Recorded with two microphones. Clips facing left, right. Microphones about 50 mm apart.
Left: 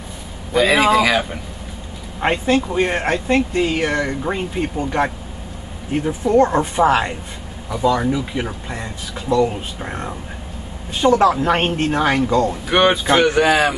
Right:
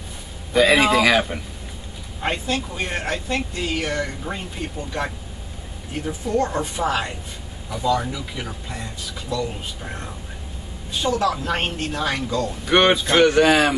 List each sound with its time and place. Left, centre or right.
0.5 s a man's voice: centre
2.1 s speech: left
12.6 s speech: centre